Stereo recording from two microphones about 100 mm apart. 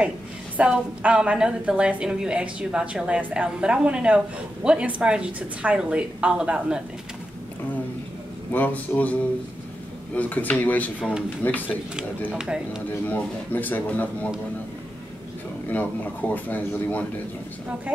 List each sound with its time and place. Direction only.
0.6 s a woman's voice: 10° right (ahead or behind)
8.5 s speech: 15° left (ahead or behind)
10.1 s speech: 15° left (ahead or behind)
12.3 s a woman's voice: 10° right (ahead or behind)
13.0 s speech: 15° left (ahead or behind)
15.7 s speech: 15° left (ahead or behind)